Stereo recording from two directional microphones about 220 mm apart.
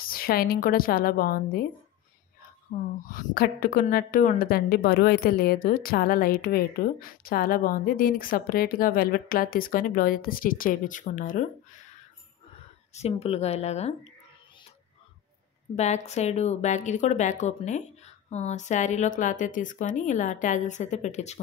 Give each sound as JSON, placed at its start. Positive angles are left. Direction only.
{"t": 0.0, "sound": "a woman's voice", "side_deg": 40}
{"t": 2.7, "sound": "a woman's voice", "side_deg": 35}
{"t": 12.9, "sound": "speech", "side_deg": 25}
{"t": 15.7, "sound": "a woman's voice", "side_deg": 30}